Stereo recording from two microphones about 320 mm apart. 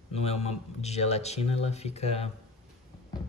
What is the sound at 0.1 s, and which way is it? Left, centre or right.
Speech, centre.